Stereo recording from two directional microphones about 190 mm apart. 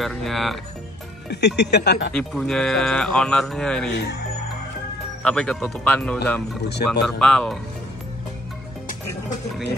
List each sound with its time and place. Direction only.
0.0 s speech: centre (ahead or behind)
1.3 s speech: 65° left (ahead or behind)
2.1 s speech: centre (ahead or behind)
3.9 s speech: 65° left (ahead or behind)
5.2 s speech: 5° left (ahead or behind)